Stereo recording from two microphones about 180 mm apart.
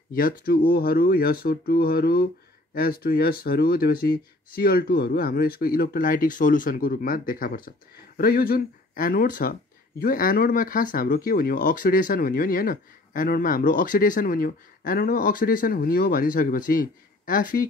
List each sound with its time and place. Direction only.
0.1 s speech: 55° left (ahead or behind)